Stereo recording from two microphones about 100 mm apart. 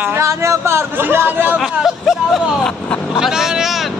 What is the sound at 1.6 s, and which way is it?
Speech, centre (ahead or behind).